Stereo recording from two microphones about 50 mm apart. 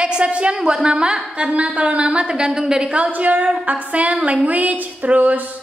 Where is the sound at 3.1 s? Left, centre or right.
Right.